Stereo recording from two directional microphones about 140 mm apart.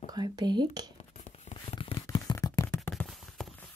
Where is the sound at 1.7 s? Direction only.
40° left (ahead or behind); by 2.9 s 20° left (ahead or behind).